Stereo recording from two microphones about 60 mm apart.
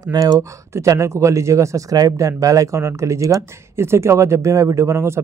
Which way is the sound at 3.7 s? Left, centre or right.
Right.